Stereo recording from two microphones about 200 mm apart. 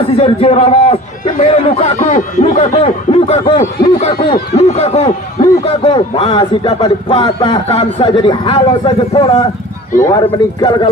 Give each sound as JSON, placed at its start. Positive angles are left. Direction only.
{"t": 0.0, "sound": "a man's voice", "side_deg": 30}